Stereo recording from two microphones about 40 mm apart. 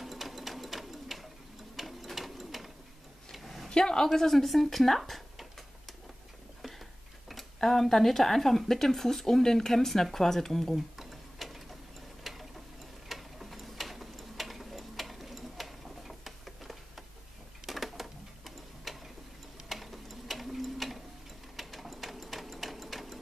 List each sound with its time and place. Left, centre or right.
0.0 s sewing machine: centre
3.3 s tick-tock: centre
3.6 s speech: centre
11.0 s sewing machine: centre
12.2 s a sound: centre
13.1 s tick-tock: centre
17.6 s sewing machine: centre
19.7 s a sound: centre
21.5 s sewing machine: centre